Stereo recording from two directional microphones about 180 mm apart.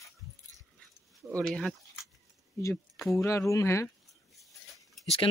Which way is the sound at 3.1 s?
15° left (ahead or behind).